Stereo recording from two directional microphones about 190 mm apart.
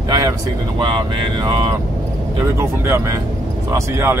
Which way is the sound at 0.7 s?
25° right (ahead or behind).